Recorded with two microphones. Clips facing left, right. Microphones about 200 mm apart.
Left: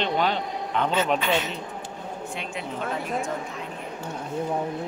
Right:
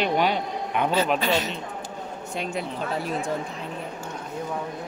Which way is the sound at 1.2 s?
40° right (ahead or behind).